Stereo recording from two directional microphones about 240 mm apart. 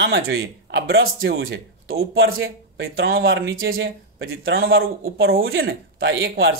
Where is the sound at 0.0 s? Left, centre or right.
Right.